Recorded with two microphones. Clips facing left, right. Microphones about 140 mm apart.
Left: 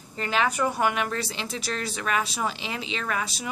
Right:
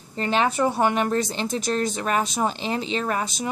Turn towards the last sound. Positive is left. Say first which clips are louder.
# right 4 dB
turn(degrees=-40)  # may be behind; listen again after turning